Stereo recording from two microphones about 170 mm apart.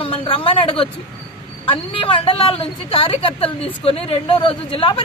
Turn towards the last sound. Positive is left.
turn(degrees=30)  # may be behind; listen again after turning